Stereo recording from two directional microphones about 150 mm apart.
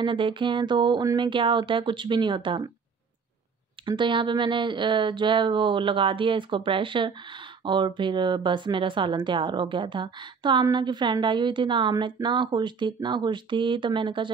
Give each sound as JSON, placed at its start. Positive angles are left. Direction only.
{"t": 0.0, "sound": "speech", "side_deg": -35}
{"t": 3.8, "sound": "speech", "side_deg": -30}